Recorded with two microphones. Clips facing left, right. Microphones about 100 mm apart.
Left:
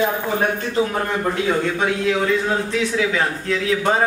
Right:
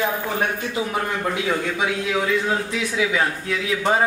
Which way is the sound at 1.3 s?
5° right (ahead or behind).